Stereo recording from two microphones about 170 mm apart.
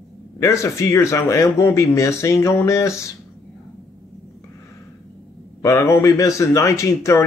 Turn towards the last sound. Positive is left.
turn(degrees=15)  # may be behind; listen again after turning